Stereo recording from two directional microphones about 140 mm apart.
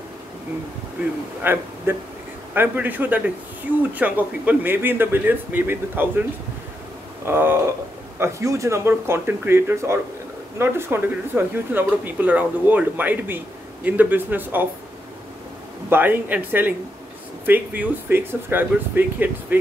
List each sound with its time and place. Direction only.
1.4 s speech: 15° right (ahead or behind)
7.2 s speech: 15° right (ahead or behind)
15.9 s speech: 15° right (ahead or behind)